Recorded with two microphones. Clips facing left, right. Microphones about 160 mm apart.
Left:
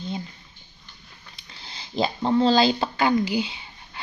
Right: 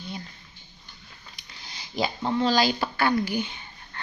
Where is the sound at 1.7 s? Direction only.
25° left (ahead or behind).